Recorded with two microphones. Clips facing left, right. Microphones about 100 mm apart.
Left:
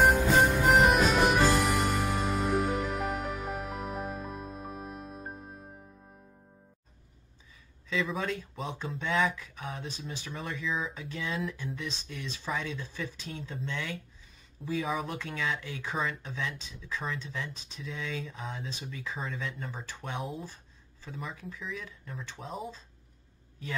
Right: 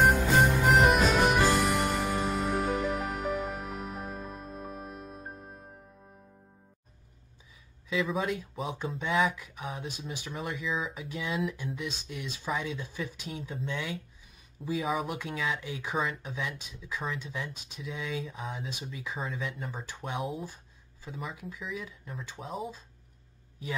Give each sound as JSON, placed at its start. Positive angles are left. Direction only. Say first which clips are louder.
{"t": 0.0, "sound": "music", "louder": "even", "side_deg": 0}
{"t": 7.9, "sound": "speech", "louder": "right 2 dB", "side_deg": -5}